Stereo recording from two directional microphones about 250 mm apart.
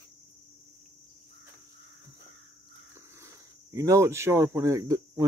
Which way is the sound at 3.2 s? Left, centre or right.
Centre.